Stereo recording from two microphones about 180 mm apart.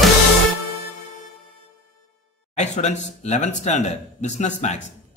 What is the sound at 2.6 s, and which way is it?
Speech, 40° left (ahead or behind).